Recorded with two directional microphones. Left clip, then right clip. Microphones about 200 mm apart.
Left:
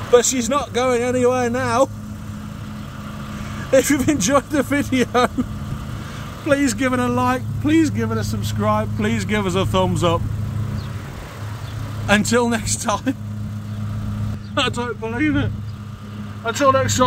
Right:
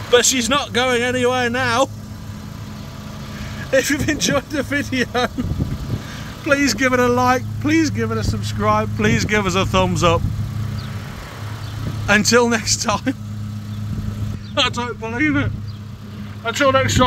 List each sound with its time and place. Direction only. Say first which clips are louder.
0.1 s speech: right 1 dB; 5° left (ahead or behind)
3.7 s speech: left 2 dB; 20° left (ahead or behind)
6.4 s speech: right 2 dB; 5° left (ahead or behind)
12.1 s speech: right 3 dB; centre (ahead or behind)
14.5 s speech: right 2 dB; centre (ahead or behind)